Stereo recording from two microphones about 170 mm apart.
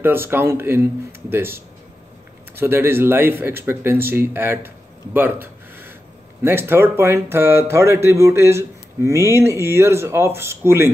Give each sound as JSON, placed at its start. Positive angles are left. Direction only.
{"t": 0.0, "sound": "speech", "side_deg": -15}